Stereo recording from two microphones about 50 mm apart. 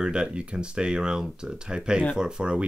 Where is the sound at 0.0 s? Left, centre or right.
Centre.